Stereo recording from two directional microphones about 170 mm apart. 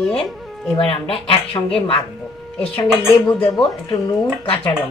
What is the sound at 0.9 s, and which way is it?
Speech, 30° left (ahead or behind).